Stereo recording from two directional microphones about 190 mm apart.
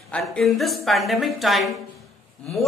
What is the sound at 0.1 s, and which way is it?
A man's voice, 5° left (ahead or behind).